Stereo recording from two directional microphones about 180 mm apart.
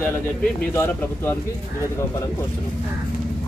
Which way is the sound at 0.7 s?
10° left (ahead or behind).